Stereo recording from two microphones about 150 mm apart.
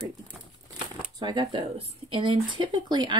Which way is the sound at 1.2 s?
30° right (ahead or behind).